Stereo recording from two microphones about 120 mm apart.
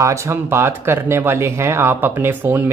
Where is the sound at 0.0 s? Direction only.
25° right (ahead or behind).